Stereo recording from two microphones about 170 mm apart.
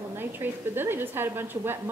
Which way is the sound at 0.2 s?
10° right (ahead or behind).